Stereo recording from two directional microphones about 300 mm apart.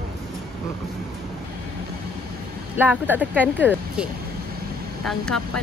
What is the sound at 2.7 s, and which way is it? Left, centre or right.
Speech, centre.